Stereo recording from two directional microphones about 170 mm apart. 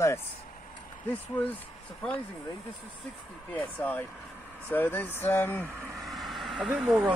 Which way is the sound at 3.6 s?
10° left (ahead or behind).